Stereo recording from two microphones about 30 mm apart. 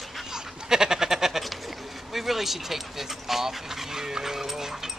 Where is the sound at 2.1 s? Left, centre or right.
Centre.